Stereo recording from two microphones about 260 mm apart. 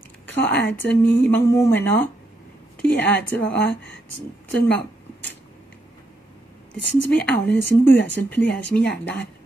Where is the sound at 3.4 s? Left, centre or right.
Left.